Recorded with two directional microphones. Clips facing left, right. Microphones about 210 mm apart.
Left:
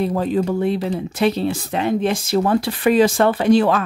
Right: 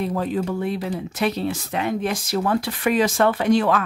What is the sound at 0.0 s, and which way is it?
Speech, 30° left (ahead or behind).